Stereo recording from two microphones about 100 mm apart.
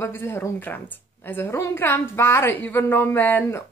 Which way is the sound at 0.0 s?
25° left (ahead or behind).